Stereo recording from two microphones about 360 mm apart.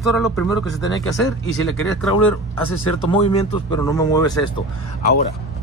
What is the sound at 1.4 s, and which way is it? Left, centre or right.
Speech, left.